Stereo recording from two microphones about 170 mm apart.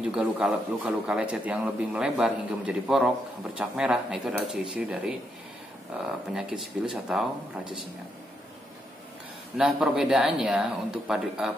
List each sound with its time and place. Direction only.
0.0 s a man's voice: 5° right (ahead or behind)
6.2 s speech: 5° right (ahead or behind)
9.6 s speech: 5° right (ahead or behind)